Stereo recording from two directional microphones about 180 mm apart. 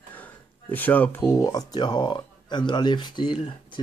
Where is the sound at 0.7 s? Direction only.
10° left (ahead or behind).